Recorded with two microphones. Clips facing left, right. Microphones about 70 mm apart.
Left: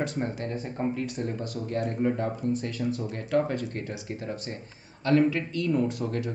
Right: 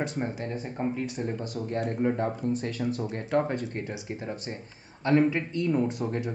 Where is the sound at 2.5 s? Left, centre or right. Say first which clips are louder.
Even; right.